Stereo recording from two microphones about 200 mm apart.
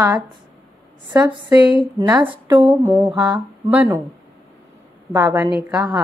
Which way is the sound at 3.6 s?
10° right (ahead or behind).